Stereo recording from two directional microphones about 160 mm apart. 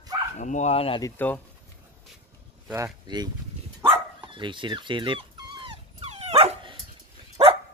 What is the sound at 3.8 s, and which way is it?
Dog, 15° right (ahead or behind).